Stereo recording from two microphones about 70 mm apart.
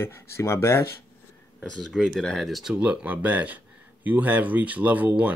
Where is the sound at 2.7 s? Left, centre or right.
Centre.